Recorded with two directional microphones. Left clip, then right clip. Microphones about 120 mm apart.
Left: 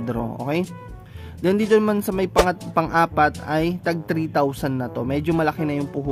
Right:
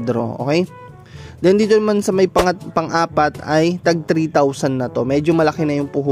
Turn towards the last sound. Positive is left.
turn(degrees=-40)  # may be behind; listen again after turning